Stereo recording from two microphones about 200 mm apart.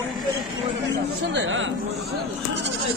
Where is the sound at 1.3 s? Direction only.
70° right (ahead or behind).